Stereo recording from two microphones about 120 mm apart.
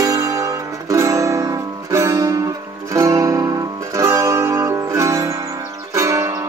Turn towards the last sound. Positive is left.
turn(degrees=-25)  # may be behind; listen again after turning